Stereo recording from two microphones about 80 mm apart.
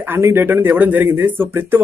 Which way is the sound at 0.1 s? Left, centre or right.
Right.